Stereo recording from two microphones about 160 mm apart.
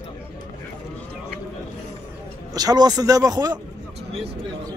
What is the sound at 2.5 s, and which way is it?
Speech, 25° right (ahead or behind).